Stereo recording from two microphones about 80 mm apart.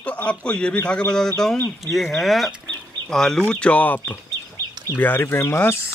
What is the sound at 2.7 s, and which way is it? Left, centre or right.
Chicken, centre.